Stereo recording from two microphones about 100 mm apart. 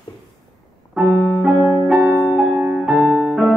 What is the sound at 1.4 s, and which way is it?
Music, 10° right (ahead or behind).